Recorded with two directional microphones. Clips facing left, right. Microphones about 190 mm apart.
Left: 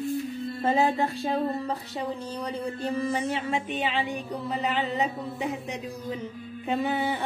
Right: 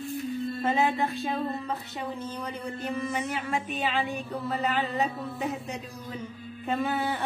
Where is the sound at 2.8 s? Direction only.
35° left (ahead or behind).